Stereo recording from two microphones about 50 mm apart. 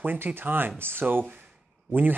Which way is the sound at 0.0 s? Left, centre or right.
Right.